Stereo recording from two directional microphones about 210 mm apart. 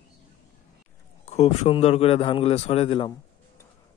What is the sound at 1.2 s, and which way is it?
Speech, 30° left (ahead or behind).